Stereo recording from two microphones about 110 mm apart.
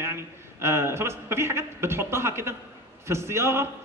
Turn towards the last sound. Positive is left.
turn(degrees=-25)  # may be behind; listen again after turning